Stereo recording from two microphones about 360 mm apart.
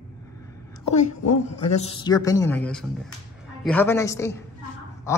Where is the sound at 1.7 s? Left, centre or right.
Centre.